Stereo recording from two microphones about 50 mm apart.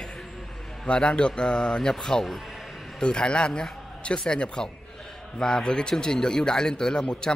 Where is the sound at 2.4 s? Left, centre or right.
Centre.